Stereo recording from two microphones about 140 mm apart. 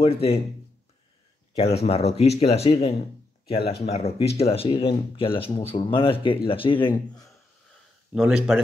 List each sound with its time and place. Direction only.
0.0 s speech: 45° left (ahead or behind)
1.5 s speech: 45° left (ahead or behind)
8.1 s speech: 5° right (ahead or behind)